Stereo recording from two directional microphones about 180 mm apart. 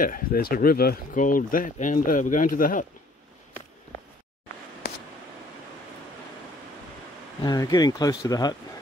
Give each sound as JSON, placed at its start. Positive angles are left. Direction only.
{"t": 0.0, "sound": "speech", "side_deg": 55}
{"t": 7.4, "sound": "speech", "side_deg": 20}